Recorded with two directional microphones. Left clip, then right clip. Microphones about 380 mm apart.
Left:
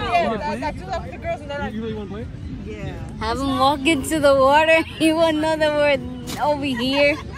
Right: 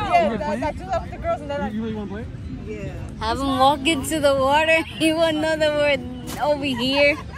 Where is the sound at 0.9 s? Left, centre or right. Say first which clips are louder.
Right 2 dB; centre.